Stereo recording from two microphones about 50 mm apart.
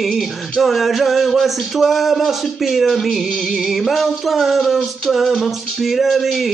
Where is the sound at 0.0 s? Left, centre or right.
Centre.